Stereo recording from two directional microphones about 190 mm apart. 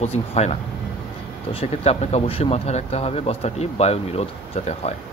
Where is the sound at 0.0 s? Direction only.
30° left (ahead or behind).